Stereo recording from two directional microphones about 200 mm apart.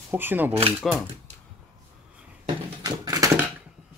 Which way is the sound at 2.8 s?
20° right (ahead or behind).